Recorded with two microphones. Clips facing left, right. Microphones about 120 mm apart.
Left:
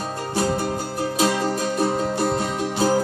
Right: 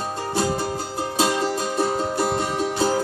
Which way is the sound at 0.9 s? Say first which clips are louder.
Left 1 dB; 25° right (ahead or behind).